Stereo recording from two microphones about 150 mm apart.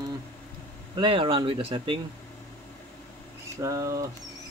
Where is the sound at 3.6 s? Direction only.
20° right (ahead or behind).